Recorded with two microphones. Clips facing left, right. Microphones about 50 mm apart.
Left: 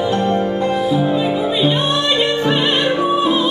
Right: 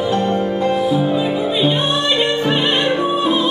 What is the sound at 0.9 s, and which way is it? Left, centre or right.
Music, centre.